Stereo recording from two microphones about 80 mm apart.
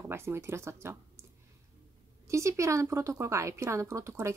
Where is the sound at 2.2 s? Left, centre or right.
Right.